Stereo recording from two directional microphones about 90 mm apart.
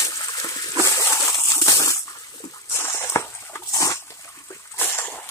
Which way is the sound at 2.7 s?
30° left (ahead or behind).